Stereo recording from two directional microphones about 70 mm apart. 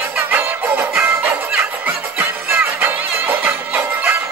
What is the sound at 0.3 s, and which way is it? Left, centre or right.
Music, right.